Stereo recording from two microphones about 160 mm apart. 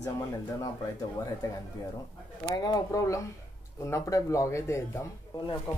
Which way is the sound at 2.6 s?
25° left (ahead or behind).